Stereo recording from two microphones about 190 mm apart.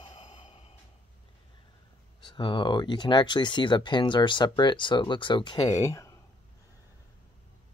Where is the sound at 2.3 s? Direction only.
25° left (ahead or behind).